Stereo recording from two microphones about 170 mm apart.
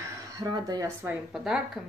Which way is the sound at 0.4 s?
25° right (ahead or behind).